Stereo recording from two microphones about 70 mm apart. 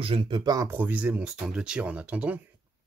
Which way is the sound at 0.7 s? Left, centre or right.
Right.